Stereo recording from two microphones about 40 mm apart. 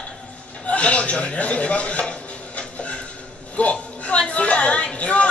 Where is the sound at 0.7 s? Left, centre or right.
Left.